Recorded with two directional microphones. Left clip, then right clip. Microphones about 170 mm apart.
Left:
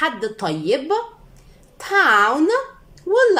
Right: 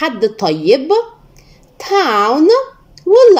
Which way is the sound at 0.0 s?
20° right (ahead or behind).